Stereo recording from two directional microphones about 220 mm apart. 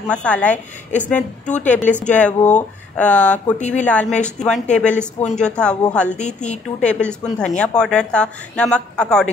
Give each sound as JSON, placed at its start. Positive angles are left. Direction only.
{"t": 0.1, "sound": "a woman's voice", "side_deg": 5}
{"t": 1.4, "sound": "a woman's voice", "side_deg": 35}
{"t": 2.0, "sound": "a woman's voice", "side_deg": 5}
{"t": 3.5, "sound": "a woman's voice", "side_deg": 30}
{"t": 3.8, "sound": "a woman's voice", "side_deg": 5}
{"t": 6.1, "sound": "a woman's voice", "side_deg": 30}
{"t": 6.8, "sound": "a woman's voice", "side_deg": 5}